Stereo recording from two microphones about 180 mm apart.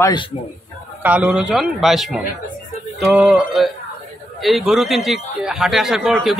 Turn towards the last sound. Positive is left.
turn(degrees=0)  # may be behind; listen again after turning